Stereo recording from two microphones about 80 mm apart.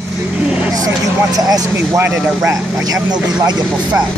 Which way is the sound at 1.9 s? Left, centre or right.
Right.